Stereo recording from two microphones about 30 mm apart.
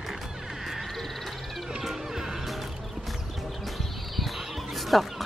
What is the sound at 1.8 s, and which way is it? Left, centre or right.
Music, centre.